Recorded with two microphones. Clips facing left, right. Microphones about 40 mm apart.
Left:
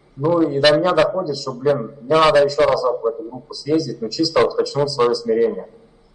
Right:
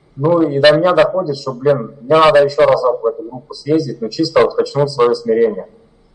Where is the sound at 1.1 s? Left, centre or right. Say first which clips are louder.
Right 4 dB; centre.